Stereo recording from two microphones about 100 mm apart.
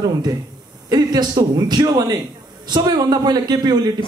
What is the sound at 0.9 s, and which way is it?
A man's voice, 45° right (ahead or behind).